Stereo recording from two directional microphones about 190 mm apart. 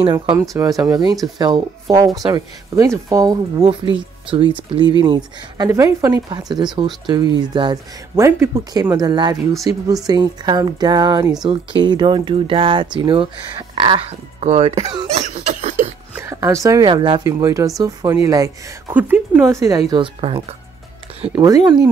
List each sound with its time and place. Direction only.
0.0 s speech: 25° right (ahead or behind)
15.0 s cough: 35° right (ahead or behind)
16.2 s speech: 15° right (ahead or behind)
19.9 s speech: 30° right (ahead or behind)